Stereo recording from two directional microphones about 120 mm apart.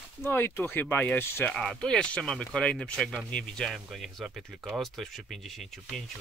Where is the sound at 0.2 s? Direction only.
20° left (ahead or behind).